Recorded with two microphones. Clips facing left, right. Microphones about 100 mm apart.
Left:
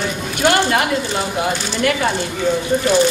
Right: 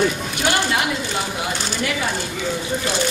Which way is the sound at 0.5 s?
50° left (ahead or behind).